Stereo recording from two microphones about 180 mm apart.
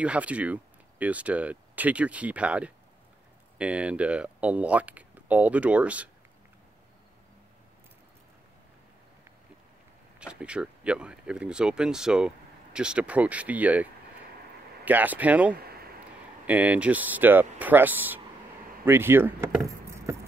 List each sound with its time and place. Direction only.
0.0 s speech: 5° right (ahead or behind)
10.2 s speech: 5° right (ahead or behind)
14.9 s speech: 10° right (ahead or behind)
15.5 s a sound: 60° right (ahead or behind)
16.4 s speech: 10° right (ahead or behind)